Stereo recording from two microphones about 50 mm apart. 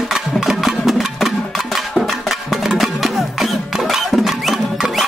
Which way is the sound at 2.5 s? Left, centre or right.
Centre.